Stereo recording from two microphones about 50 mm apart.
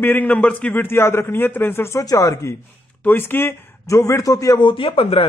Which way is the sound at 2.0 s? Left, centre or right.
Left.